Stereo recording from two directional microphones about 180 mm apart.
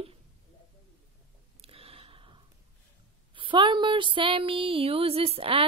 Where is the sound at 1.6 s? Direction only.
30° right (ahead or behind).